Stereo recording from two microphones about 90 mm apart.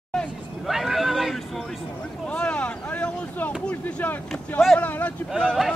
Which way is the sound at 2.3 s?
15° left (ahead or behind).